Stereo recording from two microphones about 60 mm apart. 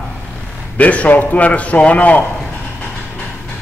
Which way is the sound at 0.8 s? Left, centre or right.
Left.